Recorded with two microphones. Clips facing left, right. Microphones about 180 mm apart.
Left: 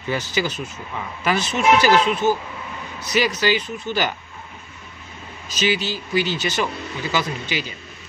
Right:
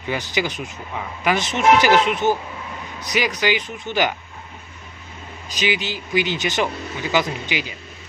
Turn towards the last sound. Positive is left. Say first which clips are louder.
# right 2 dB
turn(degrees=-15)  # may be behind; listen again after turning